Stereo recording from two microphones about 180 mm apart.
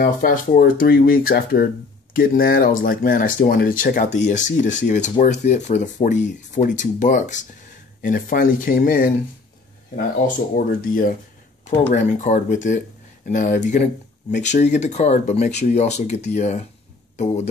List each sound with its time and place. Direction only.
0.0 s speech: 50° left (ahead or behind)
10.2 s speech: 50° left (ahead or behind)